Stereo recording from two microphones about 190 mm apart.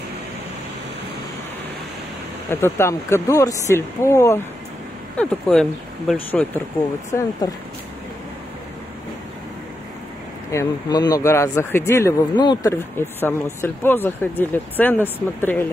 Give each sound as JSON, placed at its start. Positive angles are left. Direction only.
{"t": 2.5, "sound": "speech", "side_deg": 15}
{"t": 7.1, "sound": "speech", "side_deg": 15}
{"t": 10.5, "sound": "speech", "side_deg": 20}